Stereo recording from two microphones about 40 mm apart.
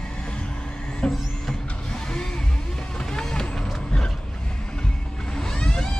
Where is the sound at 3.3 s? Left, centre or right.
Centre.